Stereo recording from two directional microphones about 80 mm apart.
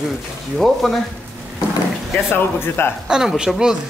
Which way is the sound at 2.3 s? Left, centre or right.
Left.